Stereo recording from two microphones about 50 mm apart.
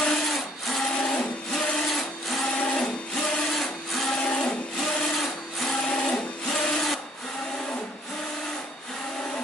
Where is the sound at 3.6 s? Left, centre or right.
Centre.